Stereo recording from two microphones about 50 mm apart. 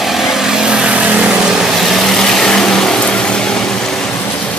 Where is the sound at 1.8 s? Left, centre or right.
Centre.